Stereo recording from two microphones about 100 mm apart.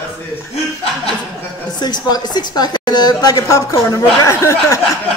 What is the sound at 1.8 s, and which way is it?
A woman's voice, 45° left (ahead or behind).